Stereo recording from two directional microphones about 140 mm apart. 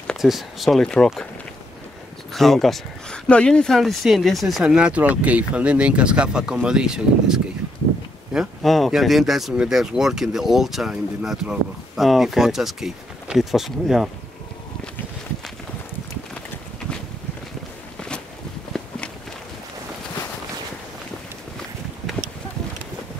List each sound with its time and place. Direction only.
0.0 s speech: centre (ahead or behind)
2.3 s speech: centre (ahead or behind)